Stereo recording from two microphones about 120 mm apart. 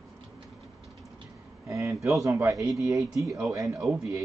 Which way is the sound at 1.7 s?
25° right (ahead or behind).